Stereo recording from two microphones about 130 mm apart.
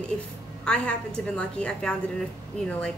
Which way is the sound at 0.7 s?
5° left (ahead or behind).